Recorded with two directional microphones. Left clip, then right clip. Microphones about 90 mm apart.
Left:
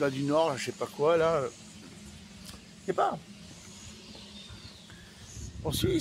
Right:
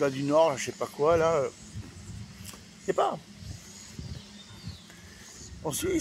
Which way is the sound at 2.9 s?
15° left (ahead or behind).